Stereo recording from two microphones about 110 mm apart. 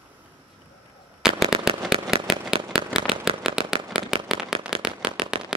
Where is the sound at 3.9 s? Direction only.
50° right (ahead or behind).